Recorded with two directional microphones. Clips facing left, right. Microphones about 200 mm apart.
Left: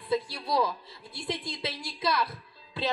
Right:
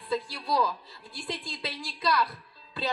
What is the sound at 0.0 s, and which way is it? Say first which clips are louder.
A woman's voice: left 2 dB; centre (ahead or behind).